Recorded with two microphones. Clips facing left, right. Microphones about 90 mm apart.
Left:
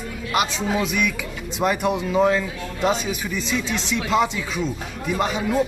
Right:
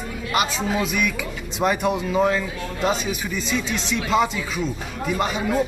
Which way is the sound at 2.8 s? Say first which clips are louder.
Left 1 dB; 20° left (ahead or behind).